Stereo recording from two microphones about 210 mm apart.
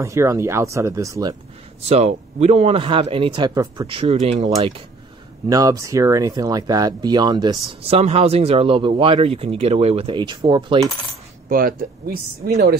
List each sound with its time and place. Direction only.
0.0 s speech: 15° right (ahead or behind)
1.9 s speech: 30° right (ahead or behind)
11.4 s speech: 40° right (ahead or behind)